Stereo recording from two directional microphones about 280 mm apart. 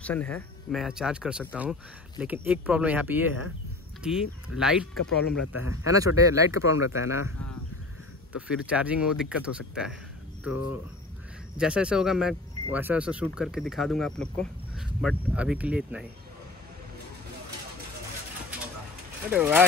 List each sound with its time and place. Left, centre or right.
0.0 s speech: centre
5.4 s a man's voice: left
5.9 s speech: centre
8.4 s speech: centre
11.5 s speech: centre
19.3 s speech: centre